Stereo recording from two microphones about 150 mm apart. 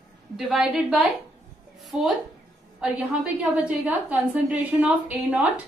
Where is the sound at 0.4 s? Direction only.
5° right (ahead or behind).